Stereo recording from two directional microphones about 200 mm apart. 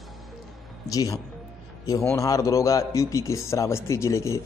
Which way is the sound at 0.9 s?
15° left (ahead or behind).